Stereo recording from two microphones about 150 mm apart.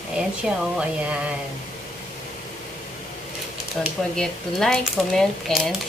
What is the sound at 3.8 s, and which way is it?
Speech, 5° left (ahead or behind).